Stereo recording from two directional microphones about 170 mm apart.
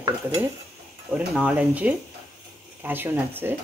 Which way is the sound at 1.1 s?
5° right (ahead or behind).